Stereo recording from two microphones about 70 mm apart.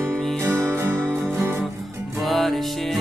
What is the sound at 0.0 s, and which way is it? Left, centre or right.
Music, centre.